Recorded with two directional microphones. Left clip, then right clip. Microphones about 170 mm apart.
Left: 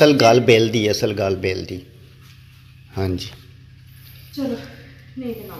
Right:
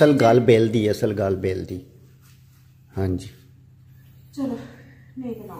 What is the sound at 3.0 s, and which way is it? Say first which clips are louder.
Speech: left 3 dB; 25° right (ahead or behind).